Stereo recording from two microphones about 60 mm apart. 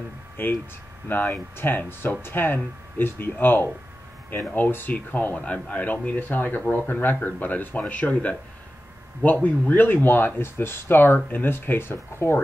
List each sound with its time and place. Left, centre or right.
0.4 s speech: left
11.1 s speech: left
11.4 s speech: left